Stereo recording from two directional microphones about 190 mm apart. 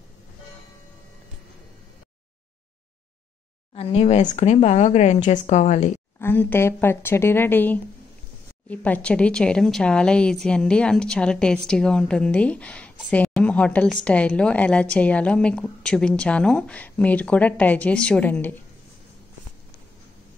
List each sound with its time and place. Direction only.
3.7 s speech: 35° left (ahead or behind)
6.1 s speech: 10° left (ahead or behind)